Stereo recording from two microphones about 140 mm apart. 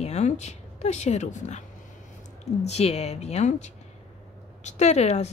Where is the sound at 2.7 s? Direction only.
50° left (ahead or behind).